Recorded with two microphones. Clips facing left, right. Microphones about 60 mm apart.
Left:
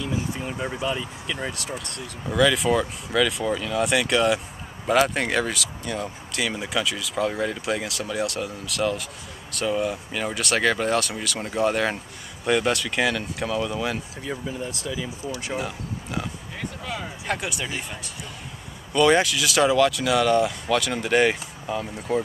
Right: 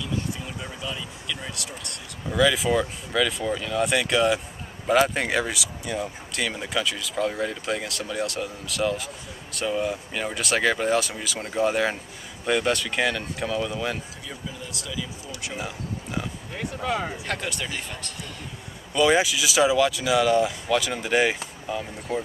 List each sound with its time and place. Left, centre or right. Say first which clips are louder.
0.0 s speech: left 2 dB; left
2.2 s speech: left 1 dB; centre
14.6 s speech: left 4 dB; left
15.5 s speech: left 3 dB; centre
16.8 s speech: right 8 dB; right
17.3 s speech: left 2 dB; centre
18.9 s speech: left 2 dB; centre